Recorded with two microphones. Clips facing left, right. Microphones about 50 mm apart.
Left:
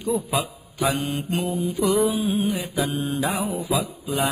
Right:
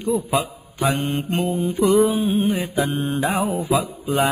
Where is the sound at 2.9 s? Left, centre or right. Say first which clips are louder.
Right 3 dB; right.